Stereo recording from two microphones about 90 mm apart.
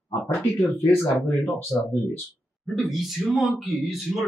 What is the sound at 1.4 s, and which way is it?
Speech, 20° left (ahead or behind).